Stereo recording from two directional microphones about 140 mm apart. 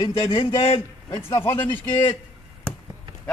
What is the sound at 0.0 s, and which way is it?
Speech, 20° left (ahead or behind).